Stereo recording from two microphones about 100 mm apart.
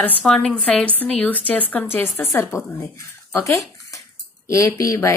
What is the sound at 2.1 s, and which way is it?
Speech, 25° left (ahead or behind).